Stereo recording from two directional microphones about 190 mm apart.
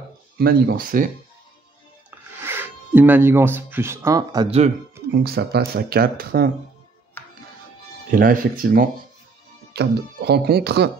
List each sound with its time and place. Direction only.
0.4 s speech: 55° right (ahead or behind)
2.0 s speech: 10° right (ahead or behind)
4.5 s speech: 35° right (ahead or behind)
5.1 s speech: 55° right (ahead or behind)
8.1 s speech: 45° right (ahead or behind)
9.8 s speech: 60° right (ahead or behind)